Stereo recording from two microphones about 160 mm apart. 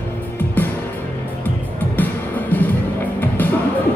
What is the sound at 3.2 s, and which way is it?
Music, 10° left (ahead or behind).